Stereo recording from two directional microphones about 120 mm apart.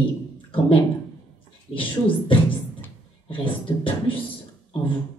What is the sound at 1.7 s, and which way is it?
Speech, 45° left (ahead or behind).